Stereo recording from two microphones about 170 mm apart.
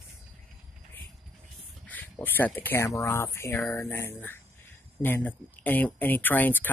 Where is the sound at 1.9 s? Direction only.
10° left (ahead or behind).